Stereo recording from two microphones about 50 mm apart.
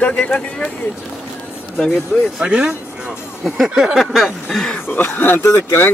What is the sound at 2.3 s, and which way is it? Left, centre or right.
Speech, right.